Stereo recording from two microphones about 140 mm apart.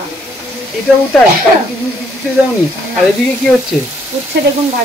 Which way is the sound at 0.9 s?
5° left (ahead or behind).